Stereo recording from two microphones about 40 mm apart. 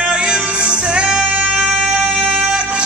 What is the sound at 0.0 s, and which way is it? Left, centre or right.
Music, right.